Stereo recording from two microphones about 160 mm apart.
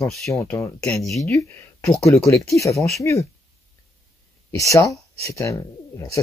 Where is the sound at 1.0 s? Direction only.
Centre (ahead or behind).